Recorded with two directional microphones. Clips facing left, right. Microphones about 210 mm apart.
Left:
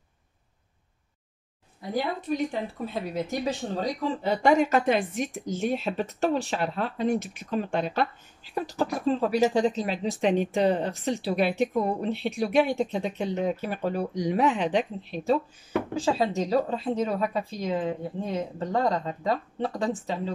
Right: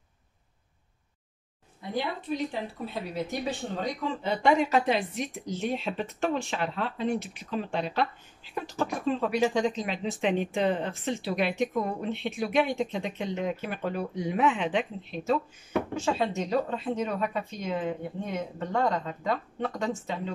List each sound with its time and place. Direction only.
1.8 s a woman's voice: 40° left (ahead or behind)
15.9 s speech: 35° left (ahead or behind)